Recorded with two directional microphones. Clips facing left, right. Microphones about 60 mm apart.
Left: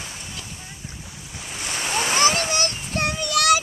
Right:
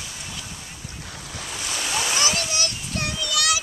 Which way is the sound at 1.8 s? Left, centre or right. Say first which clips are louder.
Left 5 dB; left.